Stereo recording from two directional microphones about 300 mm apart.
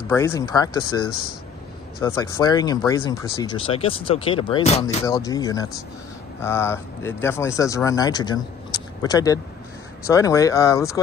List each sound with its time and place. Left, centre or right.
0.1 s speech: centre
2.0 s speech: centre